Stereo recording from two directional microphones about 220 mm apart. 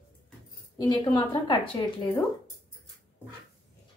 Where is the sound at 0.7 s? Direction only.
20° left (ahead or behind).